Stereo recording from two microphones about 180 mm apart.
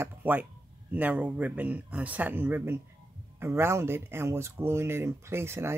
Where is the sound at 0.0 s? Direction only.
10° right (ahead or behind).